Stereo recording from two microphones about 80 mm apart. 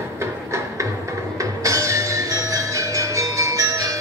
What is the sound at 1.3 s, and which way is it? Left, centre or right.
Music, right.